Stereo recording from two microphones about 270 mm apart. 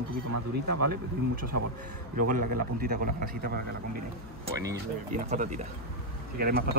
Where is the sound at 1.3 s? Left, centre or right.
Right.